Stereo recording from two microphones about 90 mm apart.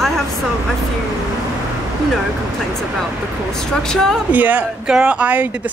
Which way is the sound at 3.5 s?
5° left (ahead or behind).